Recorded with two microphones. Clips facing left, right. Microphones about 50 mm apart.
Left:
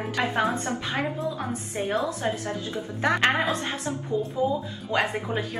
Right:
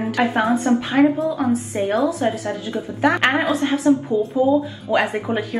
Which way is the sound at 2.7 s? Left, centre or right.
Centre.